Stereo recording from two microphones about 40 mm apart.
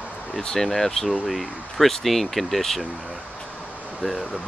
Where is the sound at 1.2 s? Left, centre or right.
Centre.